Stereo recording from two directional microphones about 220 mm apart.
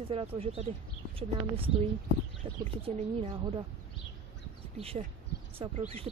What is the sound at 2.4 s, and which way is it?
Speech, 25° right (ahead or behind).